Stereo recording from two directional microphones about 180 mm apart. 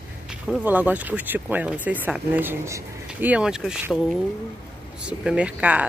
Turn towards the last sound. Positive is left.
turn(degrees=-5)  # may be behind; listen again after turning